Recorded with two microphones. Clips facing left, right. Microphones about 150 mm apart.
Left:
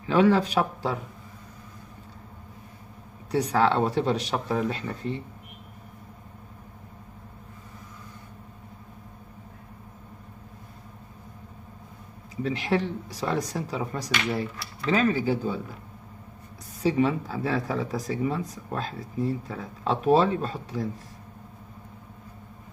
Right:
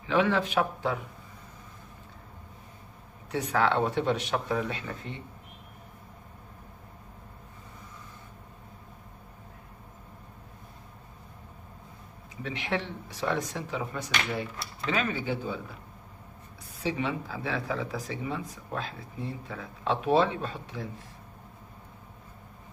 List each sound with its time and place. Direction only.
0.0 s speech: 40° left (ahead or behind)
3.3 s speech: 35° left (ahead or behind)
12.4 s speech: 40° left (ahead or behind)
16.8 s speech: 40° left (ahead or behind)